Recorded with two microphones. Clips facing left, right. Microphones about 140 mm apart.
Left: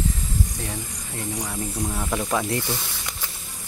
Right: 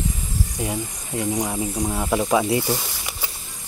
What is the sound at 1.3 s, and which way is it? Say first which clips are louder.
Speech: right 6 dB; 30° right (ahead or behind).